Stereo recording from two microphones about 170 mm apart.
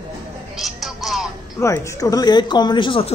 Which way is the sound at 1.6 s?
15° left (ahead or behind).